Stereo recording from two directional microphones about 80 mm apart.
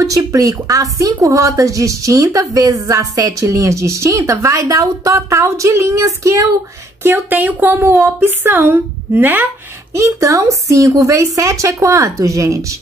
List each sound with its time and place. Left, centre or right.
0.0 s a woman's voice: right
7.0 s speech: right
9.9 s a woman's voice: right